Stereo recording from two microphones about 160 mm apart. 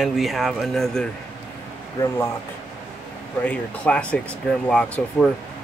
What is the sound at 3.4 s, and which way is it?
Speech, 10° left (ahead or behind).